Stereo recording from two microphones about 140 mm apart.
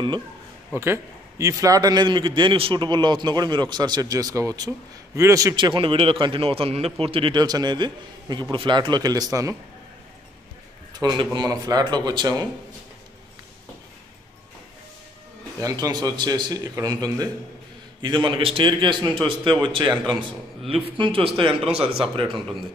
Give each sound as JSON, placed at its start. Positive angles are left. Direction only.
{"t": 0.7, "sound": "a man's voice", "side_deg": -20}
{"t": 5.7, "sound": "a man's voice", "side_deg": -40}
{"t": 10.9, "sound": "a man's voice", "side_deg": -30}
{"t": 15.6, "sound": "a man's voice", "side_deg": -25}
{"t": 21.5, "sound": "speech", "side_deg": -5}
{"t": 22.1, "sound": "a man's voice", "side_deg": -40}